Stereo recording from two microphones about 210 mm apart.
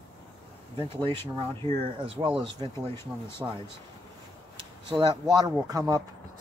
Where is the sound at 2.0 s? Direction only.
25° right (ahead or behind).